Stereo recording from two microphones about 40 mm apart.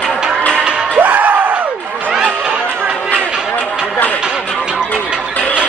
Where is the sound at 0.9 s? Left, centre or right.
Right.